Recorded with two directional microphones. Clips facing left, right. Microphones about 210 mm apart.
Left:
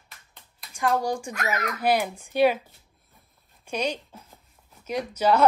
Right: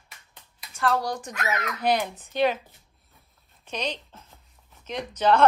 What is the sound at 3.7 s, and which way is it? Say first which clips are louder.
Speech: left 3 dB; 10° left (ahead or behind).